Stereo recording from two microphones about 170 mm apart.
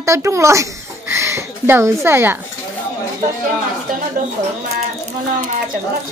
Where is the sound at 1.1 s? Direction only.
15° right (ahead or behind).